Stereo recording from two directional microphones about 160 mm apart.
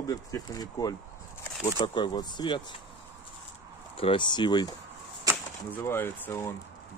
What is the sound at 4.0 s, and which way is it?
Speech, 30° left (ahead or behind).